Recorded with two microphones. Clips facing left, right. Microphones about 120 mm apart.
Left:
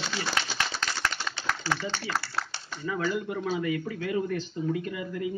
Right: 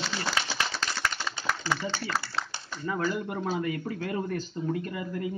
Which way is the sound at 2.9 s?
45° right (ahead or behind).